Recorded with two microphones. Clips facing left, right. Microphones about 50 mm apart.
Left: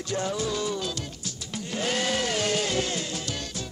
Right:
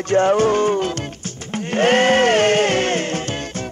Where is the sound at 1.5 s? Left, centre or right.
Right.